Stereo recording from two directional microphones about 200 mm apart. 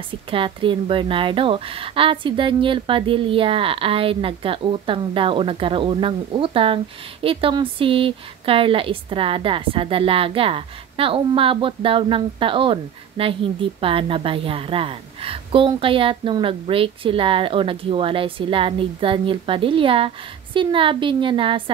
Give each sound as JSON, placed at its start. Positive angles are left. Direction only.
{"t": 0.3, "sound": "speech", "side_deg": -25}